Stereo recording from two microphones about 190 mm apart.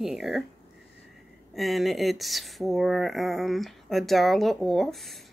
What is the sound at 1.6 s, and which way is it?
Speech, centre (ahead or behind).